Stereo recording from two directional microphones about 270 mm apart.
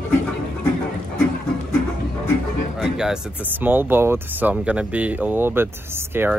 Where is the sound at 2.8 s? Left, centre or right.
Centre.